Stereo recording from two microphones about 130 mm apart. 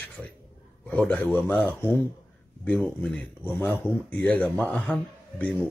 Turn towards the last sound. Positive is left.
turn(degrees=10)  # may be behind; listen again after turning